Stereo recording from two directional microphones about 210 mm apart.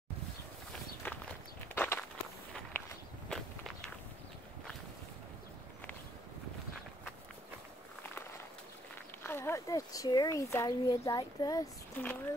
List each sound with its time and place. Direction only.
1.0 s walk: 10° left (ahead or behind)
9.2 s speech: 10° left (ahead or behind)